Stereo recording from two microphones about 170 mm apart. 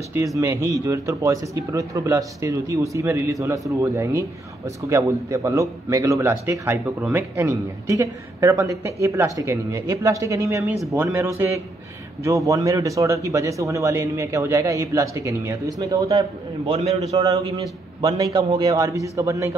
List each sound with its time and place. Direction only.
0.4 s a man's voice: 20° right (ahead or behind)